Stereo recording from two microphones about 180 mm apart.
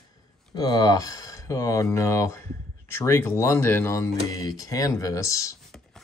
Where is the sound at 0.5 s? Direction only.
20° left (ahead or behind).